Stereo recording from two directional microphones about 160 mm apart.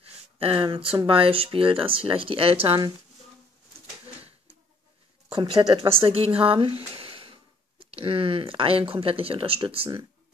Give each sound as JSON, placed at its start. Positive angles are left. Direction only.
{"t": 0.0, "sound": "speech", "side_deg": -35}
{"t": 5.4, "sound": "speech", "side_deg": -30}